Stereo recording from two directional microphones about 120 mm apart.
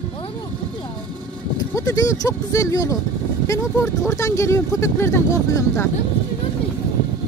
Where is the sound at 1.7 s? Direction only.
30° left (ahead or behind).